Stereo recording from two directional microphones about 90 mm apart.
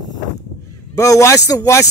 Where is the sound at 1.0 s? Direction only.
35° left (ahead or behind).